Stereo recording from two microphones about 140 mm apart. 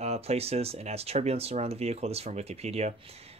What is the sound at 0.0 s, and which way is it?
Speech, 50° right (ahead or behind).